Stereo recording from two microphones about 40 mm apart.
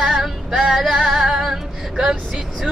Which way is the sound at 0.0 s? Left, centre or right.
Centre.